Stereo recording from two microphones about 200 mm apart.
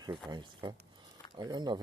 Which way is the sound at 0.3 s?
20° right (ahead or behind).